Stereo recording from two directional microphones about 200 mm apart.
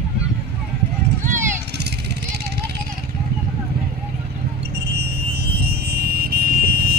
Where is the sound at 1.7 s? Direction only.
55° right (ahead or behind).